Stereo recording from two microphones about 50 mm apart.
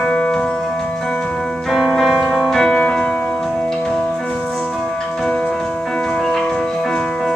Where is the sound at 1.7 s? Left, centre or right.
Centre.